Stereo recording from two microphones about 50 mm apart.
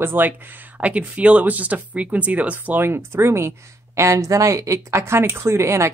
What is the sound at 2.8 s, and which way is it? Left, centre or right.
Speech, right.